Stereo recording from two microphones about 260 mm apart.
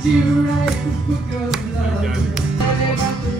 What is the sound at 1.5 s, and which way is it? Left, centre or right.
Music, centre.